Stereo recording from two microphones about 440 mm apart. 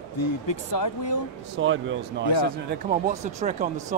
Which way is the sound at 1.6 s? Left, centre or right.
Right.